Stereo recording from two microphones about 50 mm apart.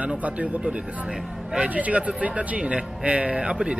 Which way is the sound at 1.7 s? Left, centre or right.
Right.